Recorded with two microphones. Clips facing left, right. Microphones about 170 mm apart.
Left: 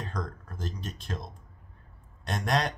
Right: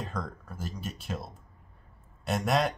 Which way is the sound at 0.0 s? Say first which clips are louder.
Even; 5° right (ahead or behind).